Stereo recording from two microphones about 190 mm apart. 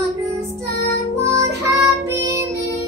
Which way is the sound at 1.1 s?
15° right (ahead or behind).